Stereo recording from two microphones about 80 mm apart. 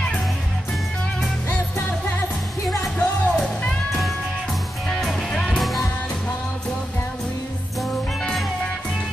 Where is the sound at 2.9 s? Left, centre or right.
Centre.